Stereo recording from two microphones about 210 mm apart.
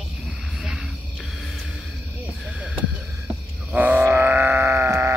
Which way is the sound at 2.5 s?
5° right (ahead or behind).